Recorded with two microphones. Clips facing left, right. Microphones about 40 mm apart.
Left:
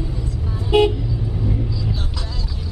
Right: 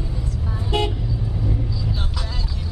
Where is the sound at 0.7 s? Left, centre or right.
Centre.